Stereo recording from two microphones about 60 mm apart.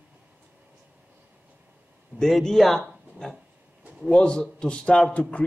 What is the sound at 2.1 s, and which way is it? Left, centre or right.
Speech, centre.